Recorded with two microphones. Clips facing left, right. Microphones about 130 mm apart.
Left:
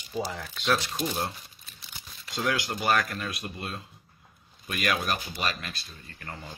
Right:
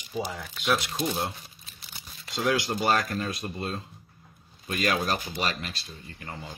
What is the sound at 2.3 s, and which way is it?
Speech, 20° right (ahead or behind).